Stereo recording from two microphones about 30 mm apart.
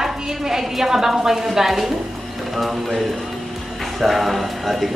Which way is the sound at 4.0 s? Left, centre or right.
Centre.